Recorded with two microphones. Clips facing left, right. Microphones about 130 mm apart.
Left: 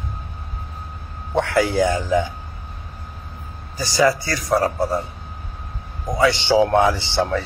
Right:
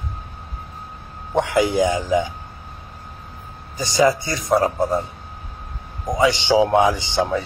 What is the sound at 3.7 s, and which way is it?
Speech, 20° right (ahead or behind).